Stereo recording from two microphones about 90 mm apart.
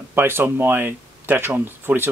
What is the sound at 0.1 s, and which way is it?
Speech, 25° right (ahead or behind).